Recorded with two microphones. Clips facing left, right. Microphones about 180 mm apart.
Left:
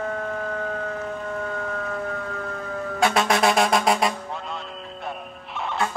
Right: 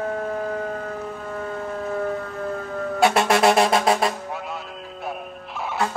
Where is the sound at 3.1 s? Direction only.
65° right (ahead or behind).